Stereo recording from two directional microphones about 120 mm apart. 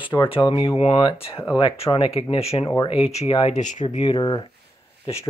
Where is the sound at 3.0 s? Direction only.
60° left (ahead or behind).